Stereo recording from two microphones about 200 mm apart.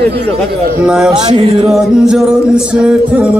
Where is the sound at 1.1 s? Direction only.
30° right (ahead or behind).